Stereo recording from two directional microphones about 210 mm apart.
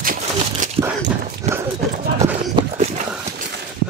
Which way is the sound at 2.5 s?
30° right (ahead or behind).